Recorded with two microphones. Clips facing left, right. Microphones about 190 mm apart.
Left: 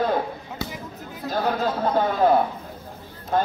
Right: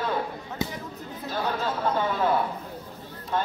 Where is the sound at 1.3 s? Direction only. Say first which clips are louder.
Left 5 dB; 40° left (ahead or behind).